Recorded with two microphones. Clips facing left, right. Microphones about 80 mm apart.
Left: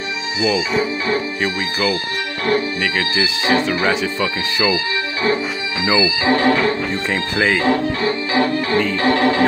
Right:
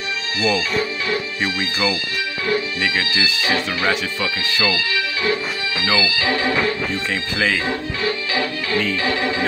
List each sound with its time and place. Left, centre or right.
0.4 s speech: centre
3.4 s speech: left
6.3 s music: left
7.5 s music: left
8.0 s music: left